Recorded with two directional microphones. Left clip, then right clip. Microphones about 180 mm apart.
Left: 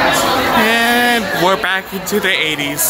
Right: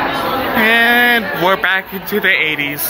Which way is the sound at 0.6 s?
5° left (ahead or behind).